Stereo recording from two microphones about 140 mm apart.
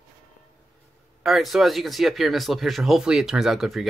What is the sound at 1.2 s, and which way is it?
Speech, centre (ahead or behind).